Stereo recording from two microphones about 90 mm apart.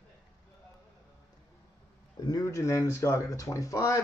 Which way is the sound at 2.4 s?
35° left (ahead or behind).